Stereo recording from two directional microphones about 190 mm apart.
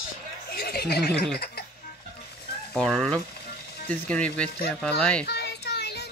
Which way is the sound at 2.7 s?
5° left (ahead or behind).